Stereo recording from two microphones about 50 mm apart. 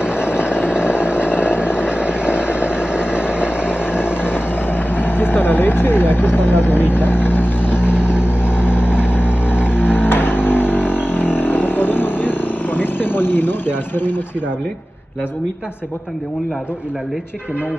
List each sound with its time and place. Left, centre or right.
0.0 s vehicle: right
4.6 s vehicle: left